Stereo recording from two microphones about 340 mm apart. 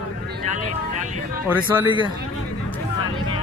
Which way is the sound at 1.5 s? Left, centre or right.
Centre.